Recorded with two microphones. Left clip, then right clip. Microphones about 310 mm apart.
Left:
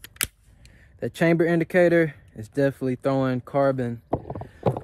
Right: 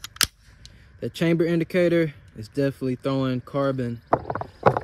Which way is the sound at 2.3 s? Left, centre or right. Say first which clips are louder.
Even; left.